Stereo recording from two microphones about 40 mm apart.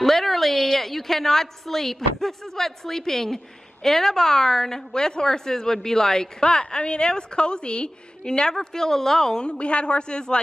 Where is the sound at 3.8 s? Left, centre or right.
Centre.